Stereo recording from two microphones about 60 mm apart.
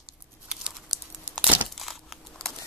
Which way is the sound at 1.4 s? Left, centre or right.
Centre.